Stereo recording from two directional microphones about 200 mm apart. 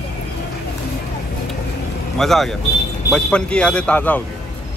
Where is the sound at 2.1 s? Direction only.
Centre (ahead or behind).